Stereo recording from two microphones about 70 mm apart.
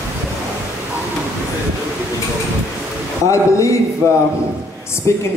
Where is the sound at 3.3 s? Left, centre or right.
Left.